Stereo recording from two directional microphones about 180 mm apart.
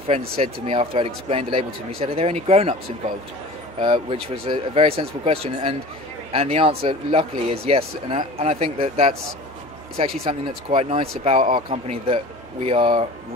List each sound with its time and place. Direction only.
0.4 s speech: 30° right (ahead or behind)
3.8 s speech: 25° right (ahead or behind)
10.2 s speech: 35° right (ahead or behind)